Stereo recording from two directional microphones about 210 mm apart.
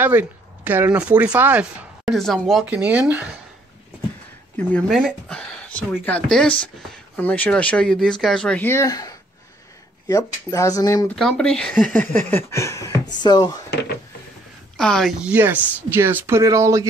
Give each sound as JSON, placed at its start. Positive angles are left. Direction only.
{"t": 0.0, "sound": "speech", "side_deg": -10}
{"t": 4.6, "sound": "speech", "side_deg": 5}
{"t": 11.1, "sound": "speech", "side_deg": 0}
{"t": 13.7, "sound": "drawer open or close", "side_deg": 55}
{"t": 14.8, "sound": "speech", "side_deg": 0}